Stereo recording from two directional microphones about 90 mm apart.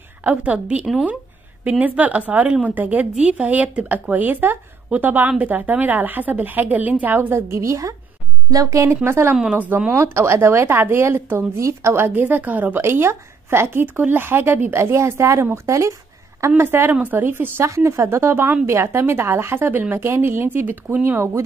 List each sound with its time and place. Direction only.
0.2 s a woman's voice: 15° right (ahead or behind)
9.3 s a woman's voice: 15° right (ahead or behind)
21.2 s speech: 30° right (ahead or behind)